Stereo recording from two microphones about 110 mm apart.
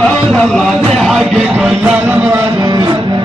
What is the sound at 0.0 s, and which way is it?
Music, 5° left (ahead or behind).